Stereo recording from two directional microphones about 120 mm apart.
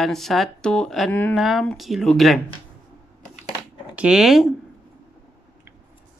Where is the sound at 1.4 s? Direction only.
Centre (ahead or behind).